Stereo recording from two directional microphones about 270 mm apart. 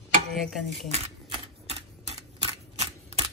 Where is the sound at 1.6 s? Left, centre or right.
Right.